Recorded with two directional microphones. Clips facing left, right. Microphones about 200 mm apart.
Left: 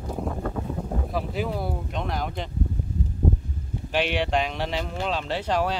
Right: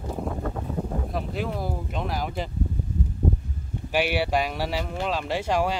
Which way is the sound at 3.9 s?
10° right (ahead or behind).